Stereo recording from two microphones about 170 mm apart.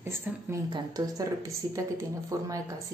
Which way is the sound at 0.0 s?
15° right (ahead or behind).